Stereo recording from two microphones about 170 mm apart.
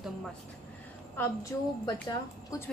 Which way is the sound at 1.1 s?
10° left (ahead or behind).